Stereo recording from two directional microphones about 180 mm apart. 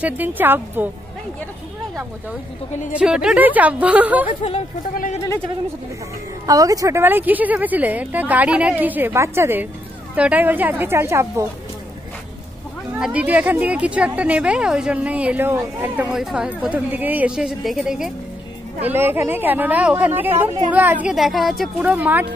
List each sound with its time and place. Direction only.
0.0 s a woman's voice: 10° right (ahead or behind)
2.9 s a woman's voice: 5° right (ahead or behind)
4.3 s speech: 35° left (ahead or behind)
4.9 s speech: 45° left (ahead or behind)
6.4 s a woman's voice: 20° right (ahead or behind)
13.0 s a woman's voice: 10° right (ahead or behind)